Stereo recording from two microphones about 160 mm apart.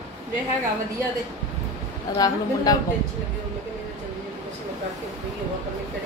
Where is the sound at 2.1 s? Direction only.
25° left (ahead or behind).